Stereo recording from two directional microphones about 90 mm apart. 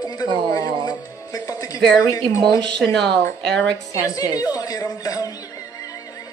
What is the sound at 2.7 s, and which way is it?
Speech, 5° left (ahead or behind).